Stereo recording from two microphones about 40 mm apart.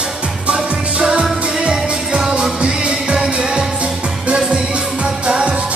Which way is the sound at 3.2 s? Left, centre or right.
Centre.